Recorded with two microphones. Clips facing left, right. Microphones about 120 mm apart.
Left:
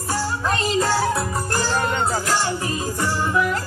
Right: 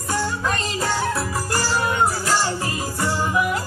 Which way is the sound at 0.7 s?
5° left (ahead or behind).